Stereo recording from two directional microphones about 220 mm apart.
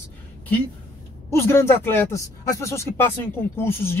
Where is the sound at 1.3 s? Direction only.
10° left (ahead or behind).